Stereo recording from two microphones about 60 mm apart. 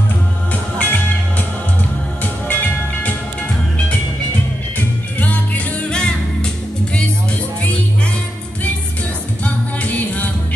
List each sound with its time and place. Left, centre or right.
0.7 s music: left
2.4 s music: left
4.7 s music: left
5.9 s music: centre
9.4 s music: left